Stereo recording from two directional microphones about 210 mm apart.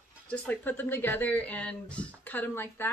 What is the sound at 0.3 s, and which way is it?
Speech, 5° left (ahead or behind).